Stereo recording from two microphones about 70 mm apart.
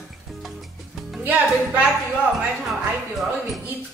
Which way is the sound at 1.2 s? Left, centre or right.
Right.